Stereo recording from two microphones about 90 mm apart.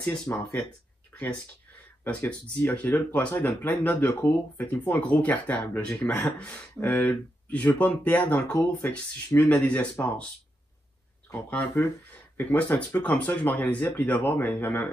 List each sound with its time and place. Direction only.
0.0 s speech: 10° left (ahead or behind)
1.7 s speech: 15° left (ahead or behind)
11.7 s speech: 25° left (ahead or behind)